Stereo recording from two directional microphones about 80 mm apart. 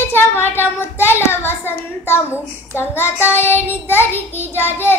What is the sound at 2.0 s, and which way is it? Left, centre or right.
A child's voice, left.